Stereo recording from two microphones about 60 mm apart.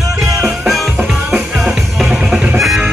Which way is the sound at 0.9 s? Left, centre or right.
Right.